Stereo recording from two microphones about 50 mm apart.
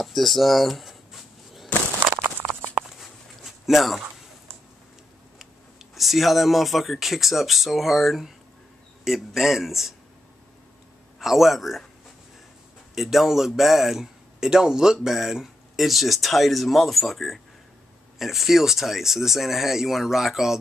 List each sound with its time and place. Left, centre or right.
0.0 s a sound: centre
3.0 s dog: centre
5.9 s a man's voice: centre
11.1 s a man's voice: centre
12.9 s a man's voice: centre